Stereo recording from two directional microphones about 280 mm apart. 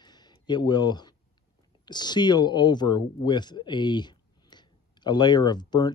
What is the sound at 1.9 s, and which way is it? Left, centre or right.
Speech, centre.